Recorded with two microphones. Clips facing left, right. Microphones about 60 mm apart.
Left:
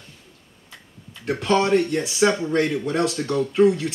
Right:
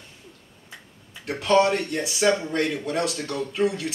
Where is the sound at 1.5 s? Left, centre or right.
Left.